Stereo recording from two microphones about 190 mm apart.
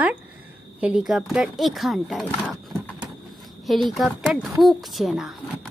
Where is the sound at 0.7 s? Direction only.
5° right (ahead or behind).